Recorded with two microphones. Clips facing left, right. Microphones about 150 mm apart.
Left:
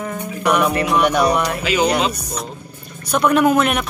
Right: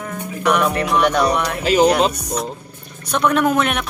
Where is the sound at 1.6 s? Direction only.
40° right (ahead or behind).